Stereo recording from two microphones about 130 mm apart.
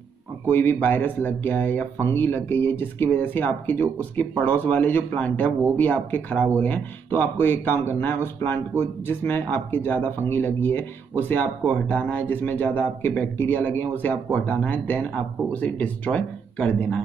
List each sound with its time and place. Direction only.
0.5 s speech: 15° left (ahead or behind)